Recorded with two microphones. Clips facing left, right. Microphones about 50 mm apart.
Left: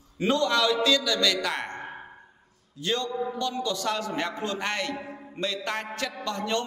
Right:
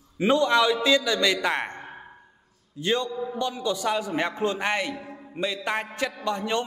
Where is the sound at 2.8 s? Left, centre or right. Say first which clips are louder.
Right 2 dB; centre.